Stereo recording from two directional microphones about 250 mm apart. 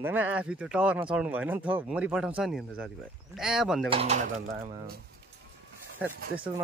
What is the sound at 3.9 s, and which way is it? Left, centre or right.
Speech, right.